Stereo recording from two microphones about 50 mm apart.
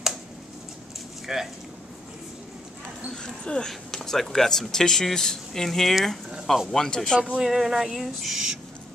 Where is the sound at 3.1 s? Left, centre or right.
Centre.